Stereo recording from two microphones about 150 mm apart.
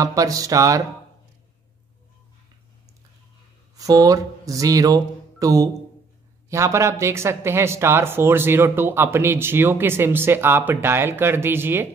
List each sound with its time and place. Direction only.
0.0 s music: 25° right (ahead or behind)
3.7 s speech: 25° right (ahead or behind)